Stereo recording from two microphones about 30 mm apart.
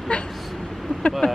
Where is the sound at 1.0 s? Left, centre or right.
Left.